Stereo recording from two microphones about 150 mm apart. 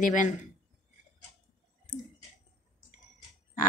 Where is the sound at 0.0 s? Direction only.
60° left (ahead or behind).